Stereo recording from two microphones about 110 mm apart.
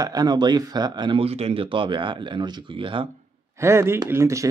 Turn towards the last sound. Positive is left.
turn(degrees=-25)  # may be behind; listen again after turning